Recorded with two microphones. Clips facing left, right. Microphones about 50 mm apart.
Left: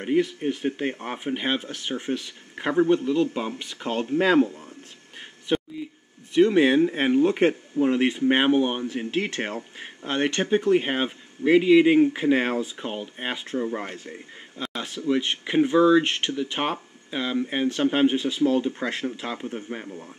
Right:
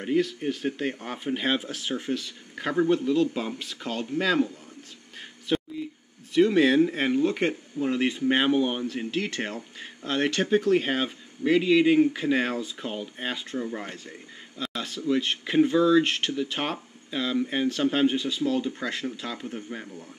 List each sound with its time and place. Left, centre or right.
0.0 s speech: left
1.6 s speech: centre
2.1 s speech: left
2.8 s speech: centre
3.8 s speech: left
5.5 s a sound: centre
6.3 s speech: centre
10.1 s speech: centre